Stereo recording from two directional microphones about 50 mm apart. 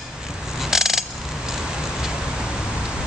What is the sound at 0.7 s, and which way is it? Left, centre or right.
Mechanisms, centre.